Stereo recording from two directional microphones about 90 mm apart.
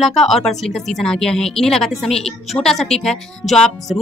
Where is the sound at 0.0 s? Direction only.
Centre (ahead or behind).